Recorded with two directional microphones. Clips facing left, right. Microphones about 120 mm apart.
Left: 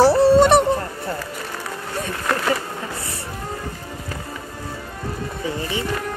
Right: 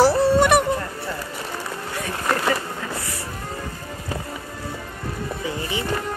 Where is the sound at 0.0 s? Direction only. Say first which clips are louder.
Left 3 dB; 25° left (ahead or behind).